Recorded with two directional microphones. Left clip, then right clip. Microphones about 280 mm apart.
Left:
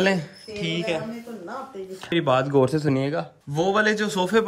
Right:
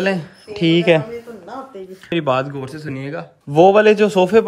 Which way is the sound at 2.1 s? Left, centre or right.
Centre.